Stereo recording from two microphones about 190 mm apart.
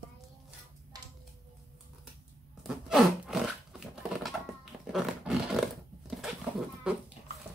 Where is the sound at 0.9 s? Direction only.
20° right (ahead or behind).